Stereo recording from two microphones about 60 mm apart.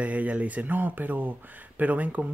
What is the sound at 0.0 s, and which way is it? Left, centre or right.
Speech, right.